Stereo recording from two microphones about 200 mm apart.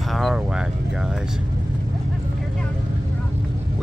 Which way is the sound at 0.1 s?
Centre (ahead or behind).